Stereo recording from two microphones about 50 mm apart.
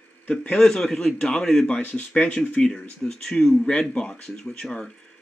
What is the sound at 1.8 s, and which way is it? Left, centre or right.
Speech, left.